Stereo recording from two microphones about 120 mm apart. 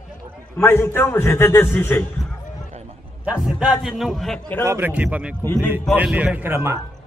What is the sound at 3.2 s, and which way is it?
Speech, 10° right (ahead or behind).